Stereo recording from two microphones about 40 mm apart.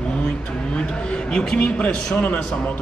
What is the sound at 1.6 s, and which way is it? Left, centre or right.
Speech, left.